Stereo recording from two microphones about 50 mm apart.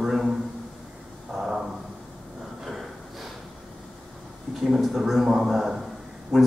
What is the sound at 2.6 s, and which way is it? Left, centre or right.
Snort, centre.